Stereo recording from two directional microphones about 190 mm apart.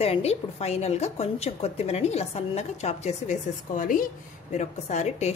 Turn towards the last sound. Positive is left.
turn(degrees=35)  # may be behind; listen again after turning